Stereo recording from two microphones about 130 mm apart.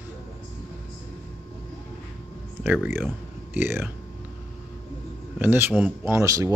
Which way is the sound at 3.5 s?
15° right (ahead or behind).